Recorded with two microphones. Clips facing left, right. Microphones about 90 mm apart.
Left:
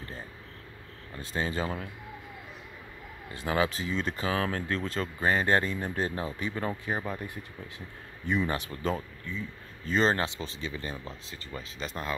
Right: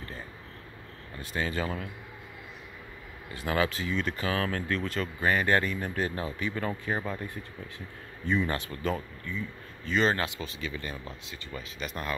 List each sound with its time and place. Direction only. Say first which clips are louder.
1.2 s speech: even; 25° left (ahead or behind)
3.3 s speech: even; 20° left (ahead or behind)